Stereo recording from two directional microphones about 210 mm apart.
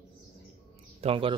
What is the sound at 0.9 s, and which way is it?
Speech, 25° right (ahead or behind).